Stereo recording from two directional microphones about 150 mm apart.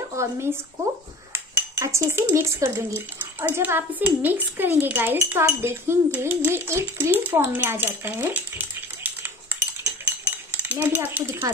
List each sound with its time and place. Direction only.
0.1 s speech: 20° right (ahead or behind)
1.3 s cutlery: 20° right (ahead or behind)
3.3 s a child's voice: 15° right (ahead or behind)